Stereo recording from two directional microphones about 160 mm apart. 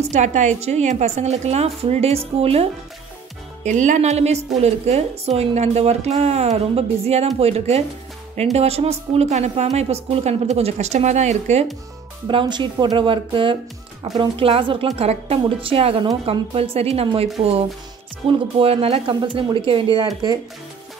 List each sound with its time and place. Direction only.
0.0 s a woman's voice: 45° right (ahead or behind)
3.6 s a woman's voice: 50° right (ahead or behind)
12.3 s speech: 30° right (ahead or behind)